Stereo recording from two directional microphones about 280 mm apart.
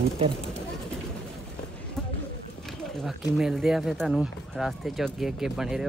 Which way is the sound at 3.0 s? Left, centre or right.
Centre.